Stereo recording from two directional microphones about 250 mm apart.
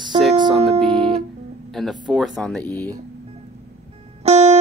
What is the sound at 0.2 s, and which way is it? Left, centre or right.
Music, centre.